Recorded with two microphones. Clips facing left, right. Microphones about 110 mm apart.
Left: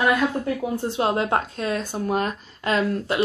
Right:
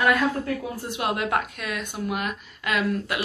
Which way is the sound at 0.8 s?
30° left (ahead or behind).